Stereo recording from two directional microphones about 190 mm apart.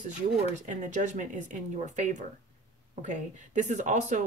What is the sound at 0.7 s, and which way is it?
Speech, 40° right (ahead or behind).